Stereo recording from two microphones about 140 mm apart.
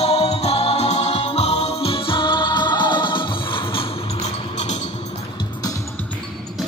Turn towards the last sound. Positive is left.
turn(degrees=25)  # may be behind; listen again after turning